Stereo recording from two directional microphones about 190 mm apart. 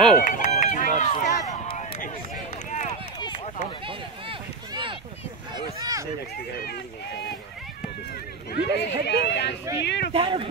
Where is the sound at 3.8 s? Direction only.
25° right (ahead or behind).